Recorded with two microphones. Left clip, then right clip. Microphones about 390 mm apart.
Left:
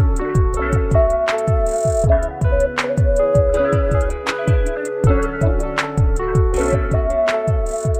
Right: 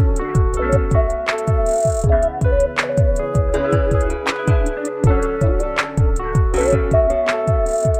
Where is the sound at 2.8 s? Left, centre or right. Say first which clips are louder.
Left 2 dB; centre.